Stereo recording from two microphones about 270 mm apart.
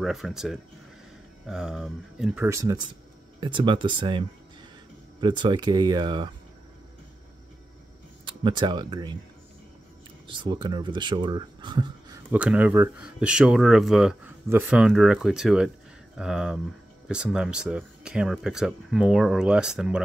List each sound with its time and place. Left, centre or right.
0.0 s speech: centre
8.3 s speech: centre
10.2 s speech: centre
12.3 s speech: centre